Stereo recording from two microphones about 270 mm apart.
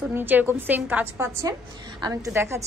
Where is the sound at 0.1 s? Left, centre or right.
Centre.